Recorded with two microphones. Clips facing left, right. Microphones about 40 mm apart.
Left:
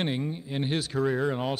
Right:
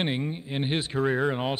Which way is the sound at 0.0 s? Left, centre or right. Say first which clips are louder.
Right 1 dB; right.